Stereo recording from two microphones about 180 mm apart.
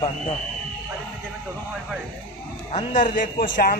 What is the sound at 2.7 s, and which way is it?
A man's voice, 45° left (ahead or behind).